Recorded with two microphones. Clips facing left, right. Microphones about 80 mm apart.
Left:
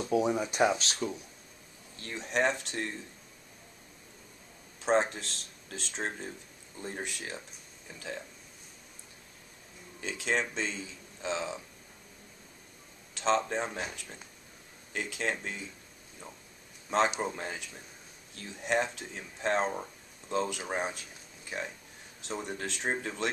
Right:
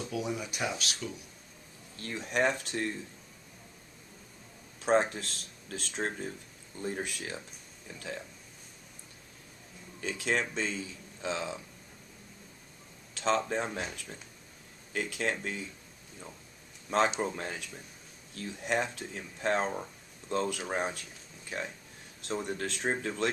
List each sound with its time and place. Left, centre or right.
0.0 s speech: left
2.0 s speech: centre
4.7 s speech: centre
9.9 s speech: centre
13.1 s speech: centre
17.2 s speech: centre